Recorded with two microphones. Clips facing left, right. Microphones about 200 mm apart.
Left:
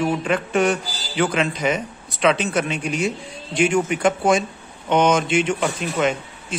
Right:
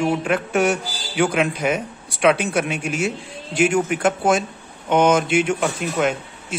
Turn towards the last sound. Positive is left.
turn(degrees=-5)  # may be behind; listen again after turning